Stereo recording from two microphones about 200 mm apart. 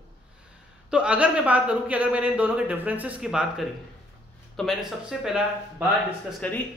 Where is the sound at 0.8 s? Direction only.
5° right (ahead or behind).